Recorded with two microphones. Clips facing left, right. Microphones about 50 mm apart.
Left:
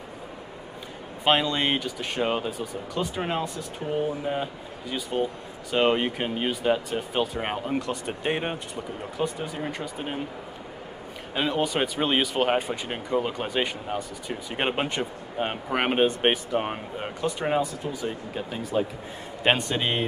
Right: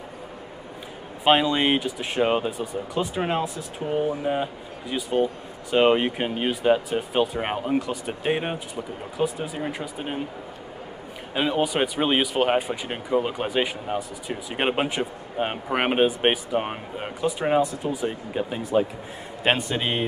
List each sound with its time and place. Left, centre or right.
1.2 s speech: centre
11.3 s speech: centre
19.4 s a man's voice: centre